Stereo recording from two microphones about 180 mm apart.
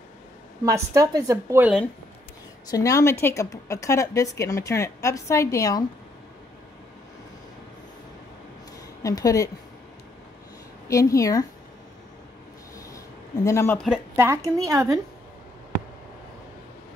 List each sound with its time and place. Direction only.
0.7 s a woman's voice: 15° right (ahead or behind)
2.7 s a woman's voice: 20° left (ahead or behind)
9.0 s speech: 20° left (ahead or behind)
10.9 s a woman's voice: 20° left (ahead or behind)
12.7 s a sound: 20° left (ahead or behind)
13.7 s a woman's voice: 5° right (ahead or behind)
14.1 s a woman's voice: 15° right (ahead or behind)